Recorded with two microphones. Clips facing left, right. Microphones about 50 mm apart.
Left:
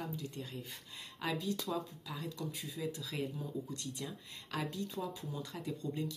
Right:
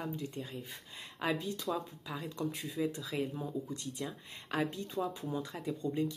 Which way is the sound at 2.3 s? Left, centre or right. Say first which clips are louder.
Right 5 dB; right.